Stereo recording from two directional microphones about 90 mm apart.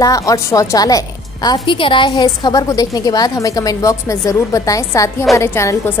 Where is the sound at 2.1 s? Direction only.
45° left (ahead or behind).